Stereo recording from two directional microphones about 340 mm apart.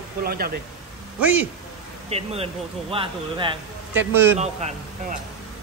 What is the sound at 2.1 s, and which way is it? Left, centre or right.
A man's voice, centre.